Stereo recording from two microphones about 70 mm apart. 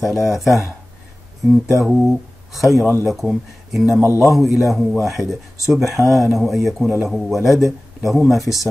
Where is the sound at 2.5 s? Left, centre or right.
Centre.